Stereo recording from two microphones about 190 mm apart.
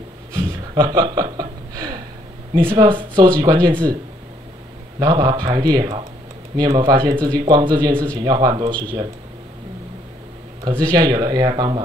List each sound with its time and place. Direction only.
0.3 s a sound: 15° right (ahead or behind)
2.7 s speech: 25° right (ahead or behind)
4.9 s speech: 20° right (ahead or behind)
10.6 s speech: 20° right (ahead or behind)